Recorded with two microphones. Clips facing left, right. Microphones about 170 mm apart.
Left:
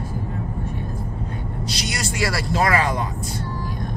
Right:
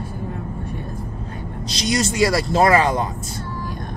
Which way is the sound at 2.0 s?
20° right (ahead or behind).